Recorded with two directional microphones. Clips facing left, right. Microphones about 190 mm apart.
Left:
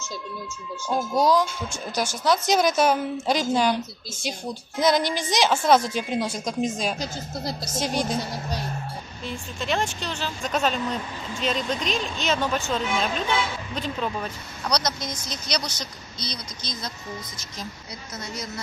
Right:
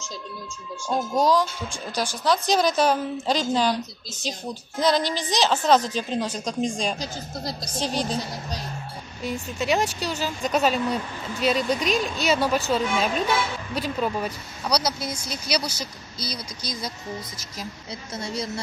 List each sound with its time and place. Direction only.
0.8 s a woman's voice: 10° left (ahead or behind)
9.2 s speech: 10° right (ahead or behind)
18.1 s a woman's voice: 30° right (ahead or behind)